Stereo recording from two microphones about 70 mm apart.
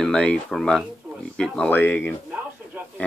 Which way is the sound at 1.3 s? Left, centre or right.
Centre.